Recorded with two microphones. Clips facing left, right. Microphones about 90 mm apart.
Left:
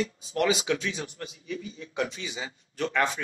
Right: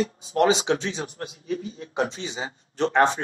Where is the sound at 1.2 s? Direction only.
45° right (ahead or behind).